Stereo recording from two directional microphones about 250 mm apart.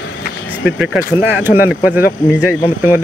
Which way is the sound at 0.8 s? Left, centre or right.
Centre.